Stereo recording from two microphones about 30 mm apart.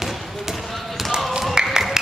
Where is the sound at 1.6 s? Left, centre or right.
Right.